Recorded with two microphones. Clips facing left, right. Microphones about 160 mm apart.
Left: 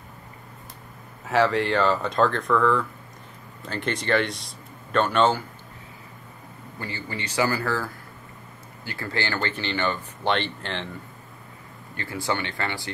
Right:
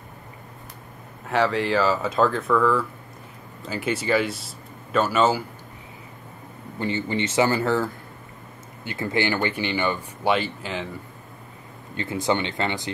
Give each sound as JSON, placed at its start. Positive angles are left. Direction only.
{"t": 1.2, "sound": "speech", "side_deg": 0}
{"t": 6.8, "sound": "speech", "side_deg": -20}
{"t": 12.0, "sound": "speech", "side_deg": -20}